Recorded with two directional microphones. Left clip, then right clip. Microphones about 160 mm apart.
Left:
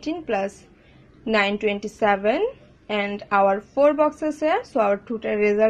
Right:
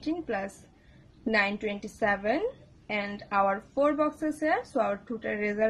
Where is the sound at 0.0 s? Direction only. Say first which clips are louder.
Left 7 dB; 20° left (ahead or behind).